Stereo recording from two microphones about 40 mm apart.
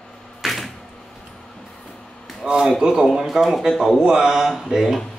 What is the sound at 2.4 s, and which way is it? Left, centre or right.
Speech, right.